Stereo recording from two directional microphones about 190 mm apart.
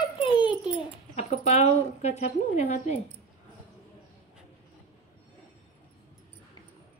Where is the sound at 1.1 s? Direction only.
35° left (ahead or behind).